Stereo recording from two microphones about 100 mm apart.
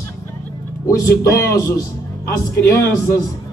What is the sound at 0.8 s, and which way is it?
A man's voice, 30° left (ahead or behind).